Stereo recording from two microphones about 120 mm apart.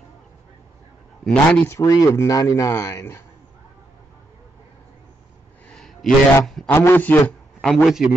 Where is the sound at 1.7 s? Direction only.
25° left (ahead or behind).